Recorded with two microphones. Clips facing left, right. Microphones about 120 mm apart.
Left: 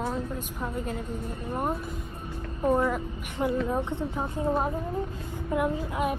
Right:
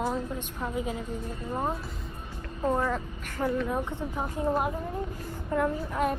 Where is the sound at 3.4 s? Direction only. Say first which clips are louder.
Left 1 dB; 20° left (ahead or behind).